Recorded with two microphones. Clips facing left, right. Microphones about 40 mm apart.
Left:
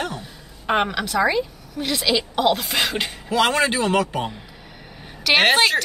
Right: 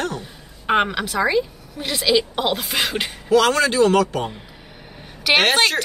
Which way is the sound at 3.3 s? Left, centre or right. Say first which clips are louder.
Right 3 dB; left.